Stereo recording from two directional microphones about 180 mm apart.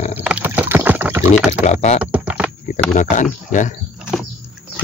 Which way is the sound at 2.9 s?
45° left (ahead or behind).